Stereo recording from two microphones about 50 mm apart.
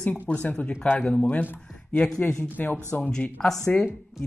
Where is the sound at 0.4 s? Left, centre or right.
Left.